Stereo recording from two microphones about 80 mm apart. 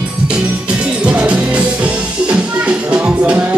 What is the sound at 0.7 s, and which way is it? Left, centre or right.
Music, centre.